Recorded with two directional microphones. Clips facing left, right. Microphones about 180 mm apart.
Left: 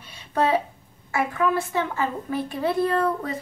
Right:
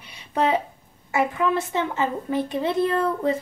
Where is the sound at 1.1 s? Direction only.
20° right (ahead or behind).